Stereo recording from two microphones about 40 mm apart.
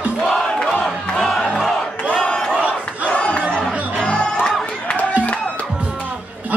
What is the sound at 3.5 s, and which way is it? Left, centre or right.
Music, left.